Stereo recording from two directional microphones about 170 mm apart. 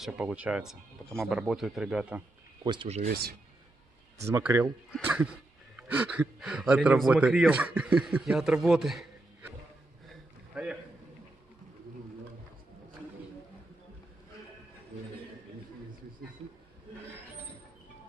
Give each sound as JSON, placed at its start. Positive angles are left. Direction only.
{"t": 0.0, "sound": "speech", "side_deg": -5}
{"t": 2.6, "sound": "speech", "side_deg": -30}
{"t": 3.1, "sound": "speech", "side_deg": -65}
{"t": 4.3, "sound": "speech", "side_deg": -15}
{"t": 10.5, "sound": "a sound", "side_deg": -5}